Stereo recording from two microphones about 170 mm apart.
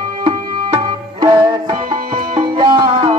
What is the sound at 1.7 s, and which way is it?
Music, 25° right (ahead or behind).